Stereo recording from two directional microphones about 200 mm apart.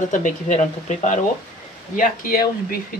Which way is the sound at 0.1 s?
40° left (ahead or behind).